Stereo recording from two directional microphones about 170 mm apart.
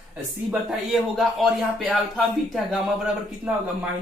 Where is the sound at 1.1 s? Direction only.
Centre (ahead or behind).